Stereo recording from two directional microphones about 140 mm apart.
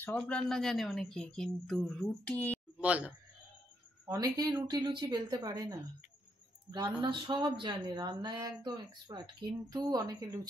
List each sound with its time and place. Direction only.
0.2 s speech: 5° left (ahead or behind)
2.8 s a man's voice: 10° right (ahead or behind)
4.1 s speech: 25° right (ahead or behind)